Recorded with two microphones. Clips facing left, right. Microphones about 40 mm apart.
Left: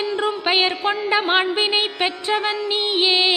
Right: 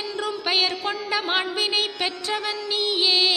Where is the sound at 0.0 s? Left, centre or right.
Left.